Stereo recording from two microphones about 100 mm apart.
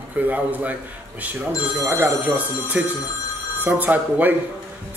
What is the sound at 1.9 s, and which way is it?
A man's voice, 15° right (ahead or behind).